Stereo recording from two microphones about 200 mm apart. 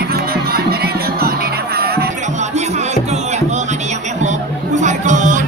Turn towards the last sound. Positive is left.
turn(degrees=-40)  # may be behind; listen again after turning